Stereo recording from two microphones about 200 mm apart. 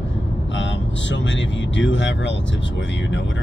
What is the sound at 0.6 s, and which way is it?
Speech, 65° left (ahead or behind).